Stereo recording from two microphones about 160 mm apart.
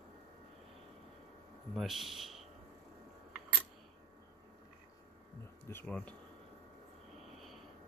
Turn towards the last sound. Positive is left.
turn(degrees=10)  # may be behind; listen again after turning